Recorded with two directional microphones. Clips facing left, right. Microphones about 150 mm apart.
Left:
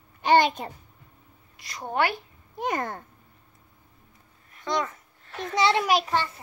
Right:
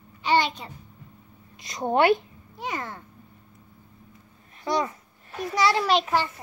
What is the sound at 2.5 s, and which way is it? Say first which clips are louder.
Speech: left 4 dB; 50° left (ahead or behind).